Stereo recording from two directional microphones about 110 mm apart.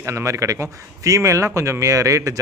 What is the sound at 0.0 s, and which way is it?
Speech, 30° right (ahead or behind).